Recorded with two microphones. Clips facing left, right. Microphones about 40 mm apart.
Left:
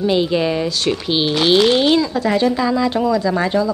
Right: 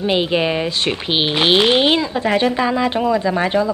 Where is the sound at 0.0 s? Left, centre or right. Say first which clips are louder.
Left 1 dB; right.